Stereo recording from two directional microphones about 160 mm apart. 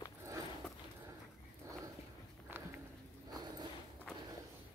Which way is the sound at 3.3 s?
25° right (ahead or behind).